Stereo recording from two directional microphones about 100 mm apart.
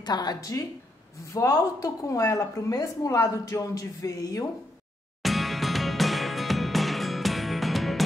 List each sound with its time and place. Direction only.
0.0 s speech: 45° left (ahead or behind)
5.2 s music: centre (ahead or behind)